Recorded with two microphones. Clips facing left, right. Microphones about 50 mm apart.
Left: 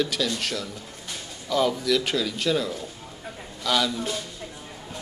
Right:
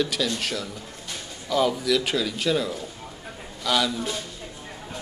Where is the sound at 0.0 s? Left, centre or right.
Centre.